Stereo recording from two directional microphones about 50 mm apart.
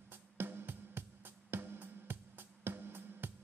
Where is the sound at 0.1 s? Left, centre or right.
Right.